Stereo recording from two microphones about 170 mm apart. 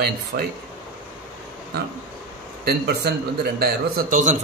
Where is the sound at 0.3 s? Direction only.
60° right (ahead or behind).